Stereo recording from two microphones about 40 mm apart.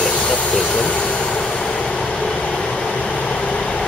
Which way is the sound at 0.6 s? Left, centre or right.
Left.